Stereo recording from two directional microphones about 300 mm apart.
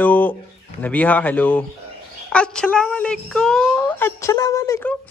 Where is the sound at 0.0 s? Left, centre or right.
Centre.